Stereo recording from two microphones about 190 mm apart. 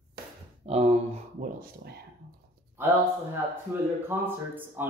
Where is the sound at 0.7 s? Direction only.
35° right (ahead or behind).